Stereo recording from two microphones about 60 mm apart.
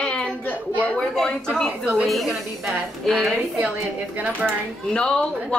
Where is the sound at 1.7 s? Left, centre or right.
Right.